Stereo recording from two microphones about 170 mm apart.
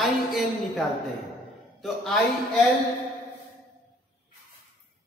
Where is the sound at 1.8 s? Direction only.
Centre (ahead or behind).